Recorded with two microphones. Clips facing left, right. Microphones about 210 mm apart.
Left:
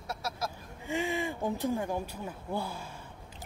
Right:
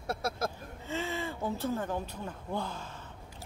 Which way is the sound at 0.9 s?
15° left (ahead or behind).